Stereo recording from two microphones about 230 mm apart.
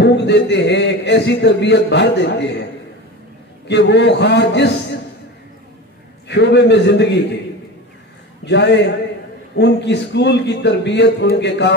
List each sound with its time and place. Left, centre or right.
0.0 s a man's voice: left
3.6 s a man's voice: left
6.2 s a man's voice: left
8.5 s a man's voice: left